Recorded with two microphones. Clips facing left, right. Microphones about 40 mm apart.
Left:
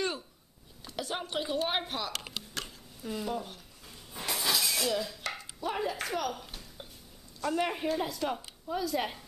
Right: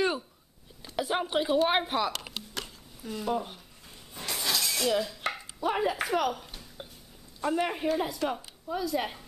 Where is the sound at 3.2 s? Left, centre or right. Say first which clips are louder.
Right 7 dB; centre.